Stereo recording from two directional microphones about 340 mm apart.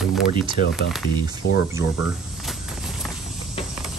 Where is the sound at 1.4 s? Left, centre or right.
Left.